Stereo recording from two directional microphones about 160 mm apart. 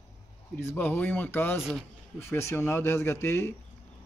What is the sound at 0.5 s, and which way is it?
Speech, 10° left (ahead or behind).